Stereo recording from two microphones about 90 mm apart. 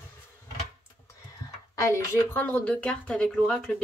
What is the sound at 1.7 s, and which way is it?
Speech, 35° left (ahead or behind).